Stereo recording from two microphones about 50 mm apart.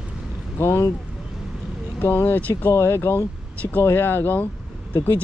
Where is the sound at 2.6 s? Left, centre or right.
Left.